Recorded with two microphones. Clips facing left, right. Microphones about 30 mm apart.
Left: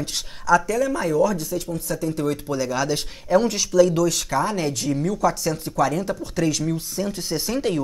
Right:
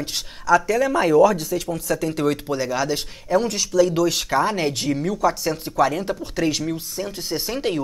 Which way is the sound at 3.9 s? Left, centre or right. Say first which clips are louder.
Right 1 dB; right.